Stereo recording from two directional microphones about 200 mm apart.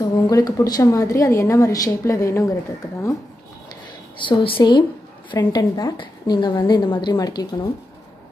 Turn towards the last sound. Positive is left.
turn(degrees=20)  # may be behind; listen again after turning